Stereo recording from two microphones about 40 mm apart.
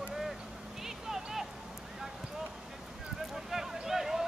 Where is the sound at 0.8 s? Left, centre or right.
Centre.